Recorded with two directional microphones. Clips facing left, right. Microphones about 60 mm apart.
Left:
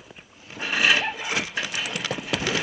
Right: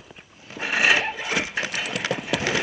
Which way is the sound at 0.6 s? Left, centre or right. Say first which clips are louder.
Right 1 dB; right.